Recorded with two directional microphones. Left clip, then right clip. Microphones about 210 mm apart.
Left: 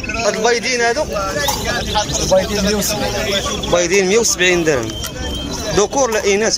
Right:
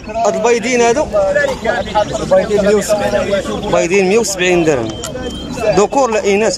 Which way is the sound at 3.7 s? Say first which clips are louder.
Right 2 dB; 5° right (ahead or behind).